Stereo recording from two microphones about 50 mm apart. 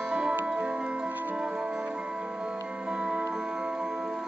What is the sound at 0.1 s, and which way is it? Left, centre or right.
Music, centre.